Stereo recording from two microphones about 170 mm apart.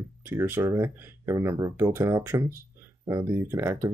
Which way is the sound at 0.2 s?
15° right (ahead or behind).